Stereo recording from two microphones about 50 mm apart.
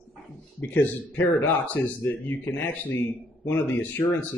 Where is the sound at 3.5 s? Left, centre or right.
Left.